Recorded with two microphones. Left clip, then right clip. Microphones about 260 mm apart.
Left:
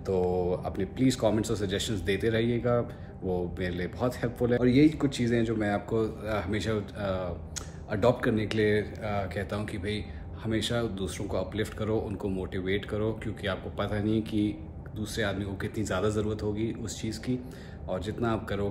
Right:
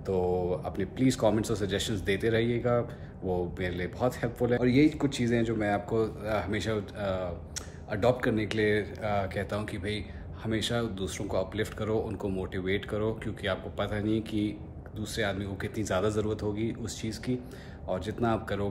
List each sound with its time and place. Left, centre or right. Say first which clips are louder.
0.0 s a man's voice: left 1 dB; centre